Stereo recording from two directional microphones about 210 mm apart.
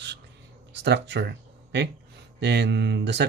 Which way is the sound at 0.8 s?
55° right (ahead or behind).